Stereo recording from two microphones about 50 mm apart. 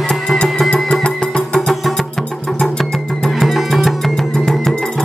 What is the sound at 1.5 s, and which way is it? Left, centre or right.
Music, centre.